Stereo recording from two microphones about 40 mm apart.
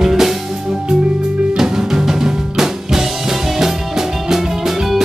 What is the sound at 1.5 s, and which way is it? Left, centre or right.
Music, centre.